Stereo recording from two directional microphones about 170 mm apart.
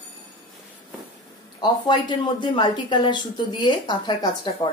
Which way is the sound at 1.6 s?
25° left (ahead or behind).